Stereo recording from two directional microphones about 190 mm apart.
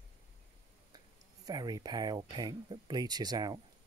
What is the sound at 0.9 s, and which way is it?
Speech, 20° right (ahead or behind).